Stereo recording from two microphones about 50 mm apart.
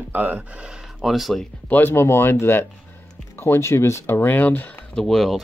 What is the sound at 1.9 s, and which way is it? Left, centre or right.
Speech, left.